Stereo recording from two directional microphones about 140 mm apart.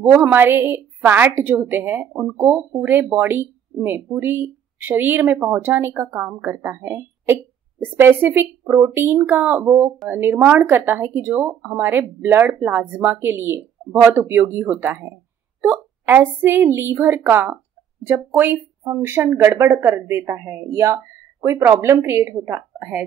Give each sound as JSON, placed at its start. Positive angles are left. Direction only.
{"t": 0.0, "sound": "speech", "side_deg": -15}